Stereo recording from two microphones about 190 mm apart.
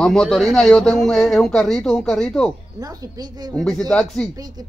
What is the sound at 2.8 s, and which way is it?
Speech, 20° right (ahead or behind).